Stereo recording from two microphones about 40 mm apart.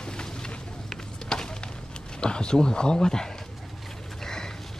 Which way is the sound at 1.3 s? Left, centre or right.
Centre.